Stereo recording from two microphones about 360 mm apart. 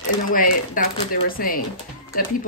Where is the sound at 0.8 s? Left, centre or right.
Left.